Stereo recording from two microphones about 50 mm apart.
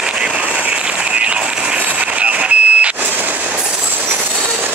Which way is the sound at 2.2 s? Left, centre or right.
Right.